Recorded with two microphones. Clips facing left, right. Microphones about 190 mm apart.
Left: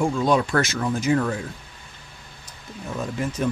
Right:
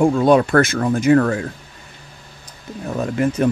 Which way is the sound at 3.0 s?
60° right (ahead or behind).